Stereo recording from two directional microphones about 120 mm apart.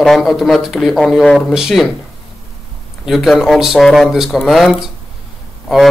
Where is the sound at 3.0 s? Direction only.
Centre (ahead or behind).